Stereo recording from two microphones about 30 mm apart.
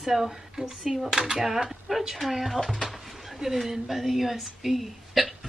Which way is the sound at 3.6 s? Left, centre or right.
Centre.